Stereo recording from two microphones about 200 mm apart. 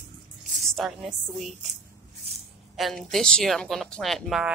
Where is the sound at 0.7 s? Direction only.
Centre (ahead or behind).